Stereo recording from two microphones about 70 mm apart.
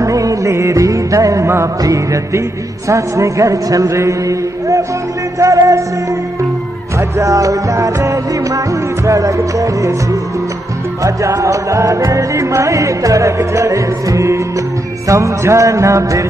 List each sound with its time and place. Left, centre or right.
0.0 s music: right
7.0 s music: right
11.0 s music: right